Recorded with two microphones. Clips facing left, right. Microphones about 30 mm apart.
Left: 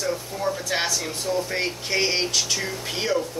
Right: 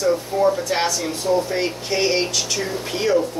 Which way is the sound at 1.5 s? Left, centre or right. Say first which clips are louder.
Right 3 dB; centre.